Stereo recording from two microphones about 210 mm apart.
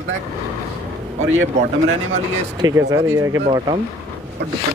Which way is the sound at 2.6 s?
20° right (ahead or behind).